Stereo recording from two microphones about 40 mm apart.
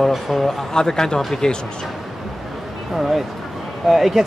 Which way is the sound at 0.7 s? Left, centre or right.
Centre.